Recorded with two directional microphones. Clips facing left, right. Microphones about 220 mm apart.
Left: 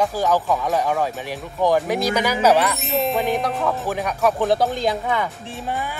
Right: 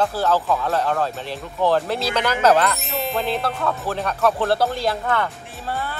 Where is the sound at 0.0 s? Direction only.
15° left (ahead or behind).